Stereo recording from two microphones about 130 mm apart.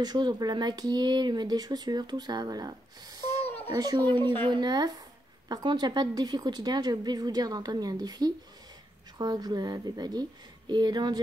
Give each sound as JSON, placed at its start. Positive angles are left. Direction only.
{"t": 0.0, "sound": "speech", "side_deg": -35}